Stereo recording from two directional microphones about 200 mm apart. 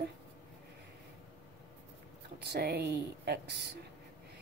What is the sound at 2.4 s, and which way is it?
A woman's voice, 55° right (ahead or behind).